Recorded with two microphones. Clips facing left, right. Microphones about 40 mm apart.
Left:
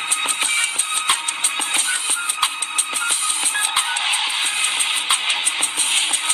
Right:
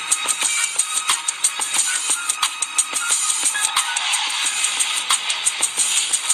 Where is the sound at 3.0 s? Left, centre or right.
Centre.